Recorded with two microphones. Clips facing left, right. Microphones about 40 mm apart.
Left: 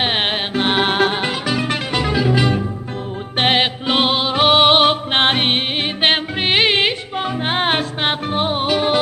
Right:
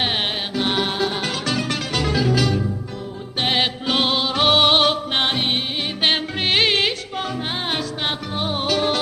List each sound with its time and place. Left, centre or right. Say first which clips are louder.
0.0 s music: left 4 dB; left
1.2 s music: left 3 dB; centre
5.2 s music: left 7 dB; left
6.4 s music: left 3 dB; centre
7.4 s music: left 6 dB; left
8.5 s music: left 2 dB; centre